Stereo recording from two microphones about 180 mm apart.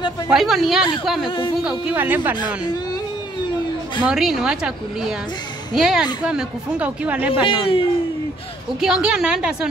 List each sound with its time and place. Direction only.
0.3 s a woman's voice: centre (ahead or behind)
4.0 s a woman's voice: 5° right (ahead or behind)
7.4 s speech: 30° left (ahead or behind)
8.8 s a woman's voice: 5° right (ahead or behind)